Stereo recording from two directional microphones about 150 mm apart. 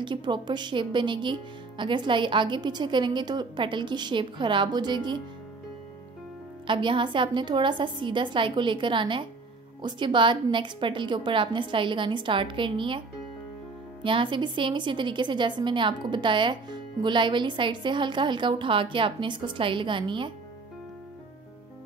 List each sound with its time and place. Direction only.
0.0 s a woman's voice: 30° right (ahead or behind)
6.7 s a woman's voice: 35° right (ahead or behind)
14.0 s a woman's voice: 35° right (ahead or behind)